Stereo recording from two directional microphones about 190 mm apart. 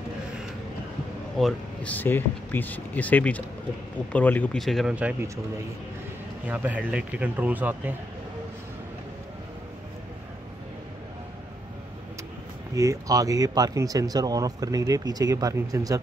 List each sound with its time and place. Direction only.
1.4 s speech: 5° left (ahead or behind); by 5.4 s 10° right (ahead or behind)
6.4 s speech: 10° right (ahead or behind)
12.7 s speech: 15° right (ahead or behind)